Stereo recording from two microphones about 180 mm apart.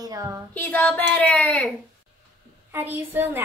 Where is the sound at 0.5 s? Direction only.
10° left (ahead or behind).